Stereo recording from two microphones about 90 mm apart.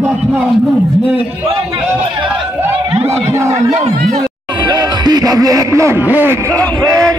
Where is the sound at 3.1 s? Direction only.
35° right (ahead or behind).